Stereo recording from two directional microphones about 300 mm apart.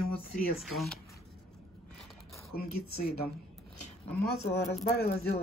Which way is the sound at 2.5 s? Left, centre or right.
Left.